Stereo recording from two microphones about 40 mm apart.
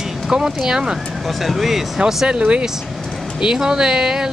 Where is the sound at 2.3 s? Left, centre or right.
Right.